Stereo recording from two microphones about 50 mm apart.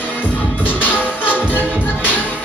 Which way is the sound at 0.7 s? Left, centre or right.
Left.